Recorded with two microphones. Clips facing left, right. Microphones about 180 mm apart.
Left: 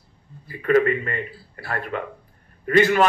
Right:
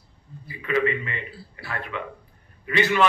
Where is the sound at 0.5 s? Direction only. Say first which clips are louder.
Left 6 dB; 45° left (ahead or behind).